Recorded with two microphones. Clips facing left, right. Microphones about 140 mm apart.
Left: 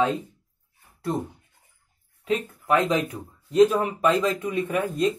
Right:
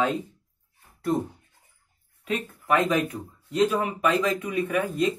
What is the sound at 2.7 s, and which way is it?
Speech, 25° left (ahead or behind).